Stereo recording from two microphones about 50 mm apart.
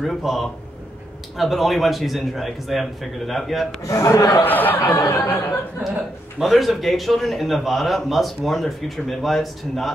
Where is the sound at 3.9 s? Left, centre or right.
Left.